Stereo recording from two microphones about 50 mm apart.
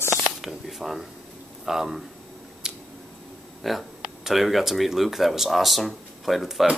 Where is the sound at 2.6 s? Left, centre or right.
Centre.